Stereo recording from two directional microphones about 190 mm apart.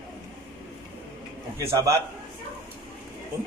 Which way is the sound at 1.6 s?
15° right (ahead or behind).